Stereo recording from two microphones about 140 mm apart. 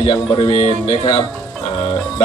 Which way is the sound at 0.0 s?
35° left (ahead or behind).